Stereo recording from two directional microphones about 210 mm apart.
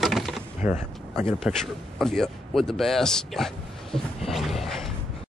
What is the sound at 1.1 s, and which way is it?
Speech, centre (ahead or behind).